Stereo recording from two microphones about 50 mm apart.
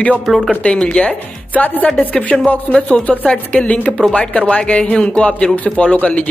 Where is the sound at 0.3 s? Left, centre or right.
Centre.